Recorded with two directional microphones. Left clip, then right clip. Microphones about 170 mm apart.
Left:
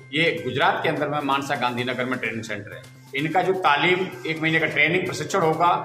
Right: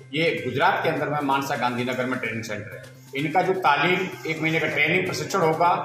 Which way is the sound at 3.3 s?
15° left (ahead or behind).